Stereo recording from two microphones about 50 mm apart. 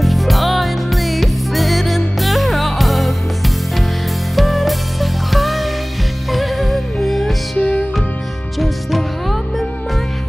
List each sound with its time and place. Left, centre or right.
0.0 s music: centre
8.5 s music: centre